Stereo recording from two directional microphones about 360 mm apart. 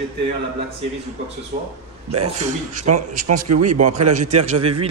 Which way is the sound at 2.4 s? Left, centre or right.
Right.